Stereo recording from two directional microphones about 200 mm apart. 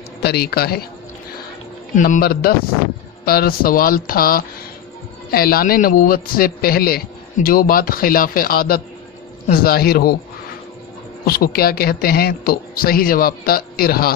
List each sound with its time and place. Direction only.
0.2 s a man's voice: 55° left (ahead or behind)
2.0 s a man's voice: 45° left (ahead or behind)
11.2 s a man's voice: 50° left (ahead or behind)